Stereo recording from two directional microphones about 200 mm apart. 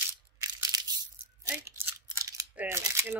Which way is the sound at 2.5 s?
10° right (ahead or behind).